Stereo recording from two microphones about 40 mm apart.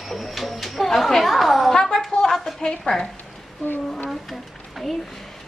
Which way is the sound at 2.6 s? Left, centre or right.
Centre.